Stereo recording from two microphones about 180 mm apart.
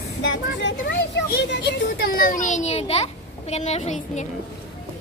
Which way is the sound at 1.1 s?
70° left (ahead or behind).